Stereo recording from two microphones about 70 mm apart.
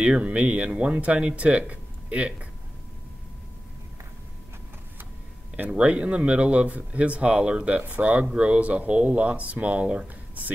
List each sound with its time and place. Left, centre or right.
0.0 s speech: centre
5.6 s speech: centre